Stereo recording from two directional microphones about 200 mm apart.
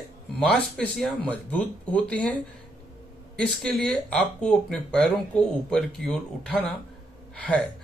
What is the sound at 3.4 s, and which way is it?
Speech, 5° left (ahead or behind).